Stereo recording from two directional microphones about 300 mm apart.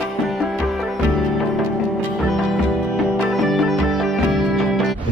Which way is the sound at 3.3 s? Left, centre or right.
Centre.